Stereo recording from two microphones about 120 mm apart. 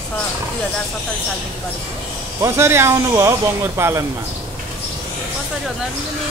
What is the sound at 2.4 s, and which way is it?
Speech, 20° right (ahead or behind).